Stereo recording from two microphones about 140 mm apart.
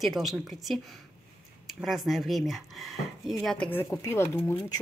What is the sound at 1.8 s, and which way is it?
Speech, centre (ahead or behind).